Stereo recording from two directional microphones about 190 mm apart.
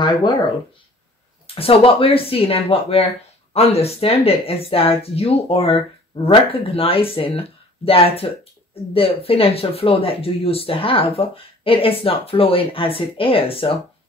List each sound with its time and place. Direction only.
0.0 s speech: 25° left (ahead or behind)
1.5 s speech: 30° left (ahead or behind)